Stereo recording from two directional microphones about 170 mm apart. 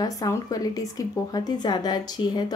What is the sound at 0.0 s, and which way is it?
A woman's voice, 20° left (ahead or behind).